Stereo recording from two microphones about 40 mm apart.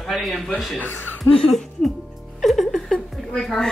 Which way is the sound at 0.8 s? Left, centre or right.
Left.